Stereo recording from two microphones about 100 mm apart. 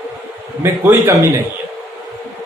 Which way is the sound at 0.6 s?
25° right (ahead or behind).